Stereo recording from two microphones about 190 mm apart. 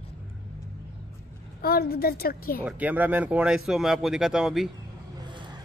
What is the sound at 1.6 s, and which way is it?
A woman's voice, 55° left (ahead or behind).